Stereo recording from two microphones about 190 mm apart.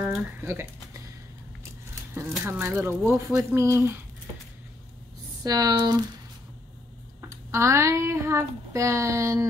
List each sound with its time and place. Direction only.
0.0 s speech: 10° right (ahead or behind)
2.4 s speech: 10° right (ahead or behind)
5.4 s speech: 20° right (ahead or behind)
7.2 s speech: 15° right (ahead or behind)